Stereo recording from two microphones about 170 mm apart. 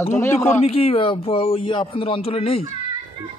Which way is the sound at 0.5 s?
35° left (ahead or behind).